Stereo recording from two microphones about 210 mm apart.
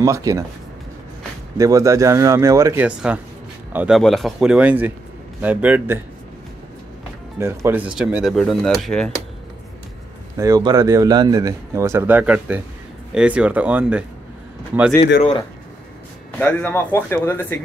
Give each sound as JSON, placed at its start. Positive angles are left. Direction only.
{"t": 0.0, "sound": "speech", "side_deg": -15}
{"t": 1.6, "sound": "speech", "side_deg": -15}
{"t": 7.3, "sound": "speech", "side_deg": -10}
{"t": 10.3, "sound": "speech", "side_deg": -15}
{"t": 16.3, "sound": "speech", "side_deg": 5}